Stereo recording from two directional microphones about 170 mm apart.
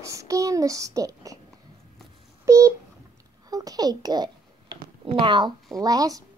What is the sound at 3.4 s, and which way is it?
A child's voice, 20° right (ahead or behind).